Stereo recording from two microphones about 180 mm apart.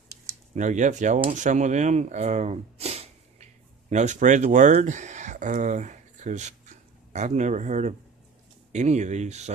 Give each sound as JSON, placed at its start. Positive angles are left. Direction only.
{"t": 0.6, "sound": "speech", "side_deg": -45}